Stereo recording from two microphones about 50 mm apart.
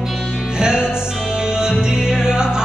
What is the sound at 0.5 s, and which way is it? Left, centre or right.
Music, centre.